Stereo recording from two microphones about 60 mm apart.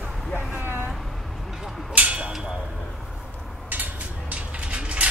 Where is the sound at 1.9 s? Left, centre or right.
Right.